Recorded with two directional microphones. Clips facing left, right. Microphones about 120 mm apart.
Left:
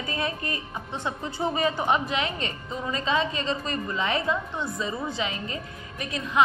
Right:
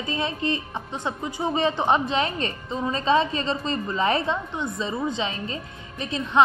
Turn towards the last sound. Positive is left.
turn(degrees=-30)  # may be behind; listen again after turning